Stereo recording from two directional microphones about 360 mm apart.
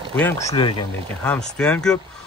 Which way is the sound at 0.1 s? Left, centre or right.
Centre.